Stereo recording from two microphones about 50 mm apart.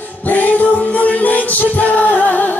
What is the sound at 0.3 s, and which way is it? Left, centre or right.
Music, left.